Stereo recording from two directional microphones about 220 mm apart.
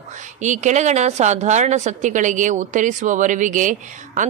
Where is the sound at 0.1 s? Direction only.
35° right (ahead or behind).